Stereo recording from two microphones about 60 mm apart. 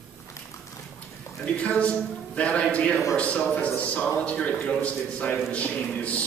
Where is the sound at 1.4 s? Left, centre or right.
Left.